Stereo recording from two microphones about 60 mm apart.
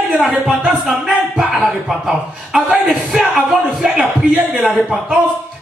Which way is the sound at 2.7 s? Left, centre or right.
Centre.